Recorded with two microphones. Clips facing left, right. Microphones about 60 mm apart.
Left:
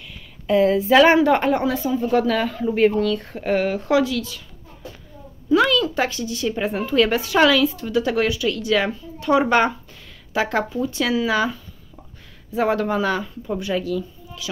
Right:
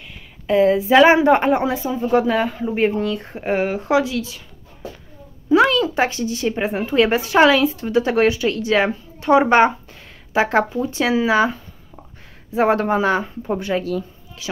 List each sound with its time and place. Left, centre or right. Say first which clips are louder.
0.5 s a woman's voice: right 1 dB; centre
5.5 s a woman's voice: right 2 dB; right